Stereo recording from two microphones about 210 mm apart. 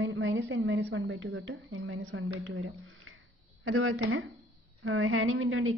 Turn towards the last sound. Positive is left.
turn(degrees=-75)  # may be behind; listen again after turning